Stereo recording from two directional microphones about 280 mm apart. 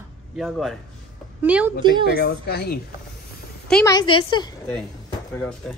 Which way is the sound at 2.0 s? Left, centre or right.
Left.